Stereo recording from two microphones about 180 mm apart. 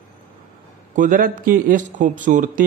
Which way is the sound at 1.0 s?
50° right (ahead or behind).